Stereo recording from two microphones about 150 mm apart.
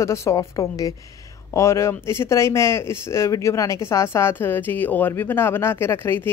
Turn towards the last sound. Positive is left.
turn(degrees=15)  # may be behind; listen again after turning